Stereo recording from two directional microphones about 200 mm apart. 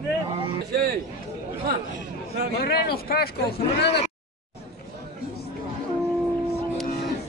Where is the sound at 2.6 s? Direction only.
50° left (ahead or behind).